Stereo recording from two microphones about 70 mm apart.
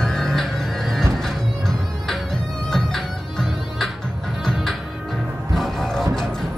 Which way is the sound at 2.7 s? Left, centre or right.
Centre.